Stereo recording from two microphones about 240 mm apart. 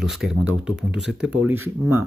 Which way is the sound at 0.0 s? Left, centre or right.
Centre.